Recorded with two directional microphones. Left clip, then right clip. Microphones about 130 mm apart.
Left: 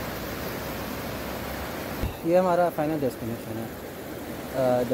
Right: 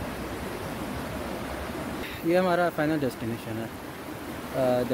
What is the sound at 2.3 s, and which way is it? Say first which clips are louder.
Speech: left 3 dB; 20° right (ahead or behind).